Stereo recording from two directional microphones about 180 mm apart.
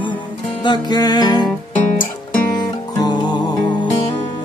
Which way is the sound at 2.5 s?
25° left (ahead or behind).